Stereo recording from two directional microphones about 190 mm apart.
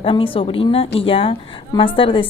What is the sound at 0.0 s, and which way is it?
A woman's voice, 30° left (ahead or behind).